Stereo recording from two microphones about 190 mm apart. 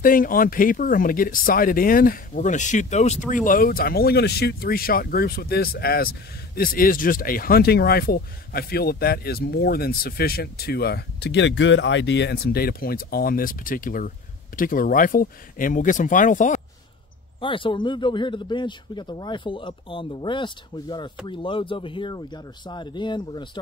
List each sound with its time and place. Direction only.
0.0 s speech: 45° left (ahead or behind)
17.4 s speech: 25° left (ahead or behind)